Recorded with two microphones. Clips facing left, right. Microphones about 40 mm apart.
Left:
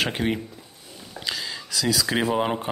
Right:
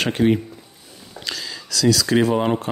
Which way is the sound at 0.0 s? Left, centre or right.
Centre.